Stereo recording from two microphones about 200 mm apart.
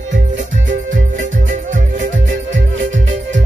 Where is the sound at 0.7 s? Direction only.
40° right (ahead or behind).